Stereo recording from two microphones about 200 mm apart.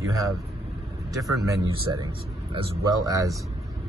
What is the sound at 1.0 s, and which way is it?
A man's voice, 15° right (ahead or behind).